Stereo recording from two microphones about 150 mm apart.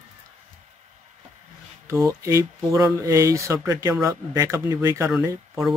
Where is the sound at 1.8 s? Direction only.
20° right (ahead or behind).